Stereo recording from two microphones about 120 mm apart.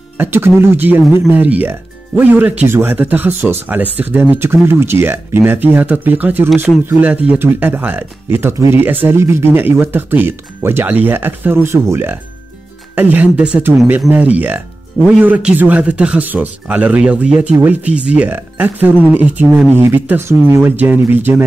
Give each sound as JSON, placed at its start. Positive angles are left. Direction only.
{"t": 0.2, "sound": "speech", "side_deg": -20}